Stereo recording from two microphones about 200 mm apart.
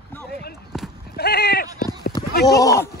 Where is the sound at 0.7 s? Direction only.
Centre (ahead or behind).